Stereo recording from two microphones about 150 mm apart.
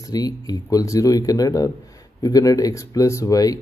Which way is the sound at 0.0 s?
25° left (ahead or behind).